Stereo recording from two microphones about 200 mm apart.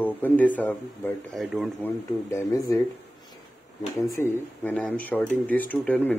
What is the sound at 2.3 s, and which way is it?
Speech, 15° left (ahead or behind).